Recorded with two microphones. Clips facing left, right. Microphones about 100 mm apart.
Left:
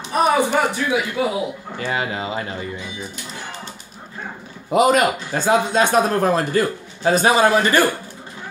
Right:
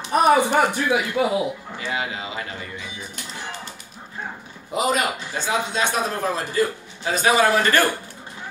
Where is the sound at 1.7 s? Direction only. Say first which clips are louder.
Left 7 dB; 45° left (ahead or behind).